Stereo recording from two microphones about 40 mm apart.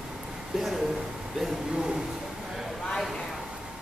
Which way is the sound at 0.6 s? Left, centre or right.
Centre.